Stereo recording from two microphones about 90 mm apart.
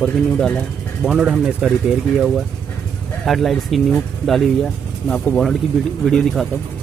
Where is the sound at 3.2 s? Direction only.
Centre (ahead or behind).